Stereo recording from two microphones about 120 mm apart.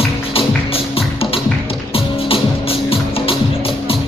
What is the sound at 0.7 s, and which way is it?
Music, 50° left (ahead or behind).